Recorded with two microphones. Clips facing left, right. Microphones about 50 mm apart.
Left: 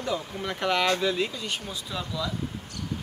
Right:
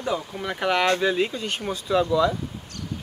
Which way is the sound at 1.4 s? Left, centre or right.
Right.